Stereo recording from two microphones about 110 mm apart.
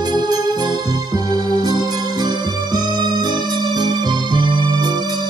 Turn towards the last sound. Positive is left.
turn(degrees=-45)  # may be behind; listen again after turning